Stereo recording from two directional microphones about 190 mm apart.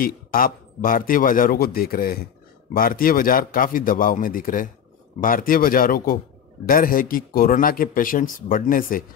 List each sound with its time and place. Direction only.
0.0 s speech: 50° left (ahead or behind)